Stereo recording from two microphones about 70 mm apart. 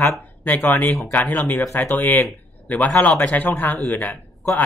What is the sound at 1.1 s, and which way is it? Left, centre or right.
Speech, left.